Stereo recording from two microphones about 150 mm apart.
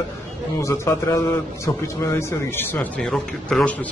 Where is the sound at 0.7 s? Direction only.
20° left (ahead or behind).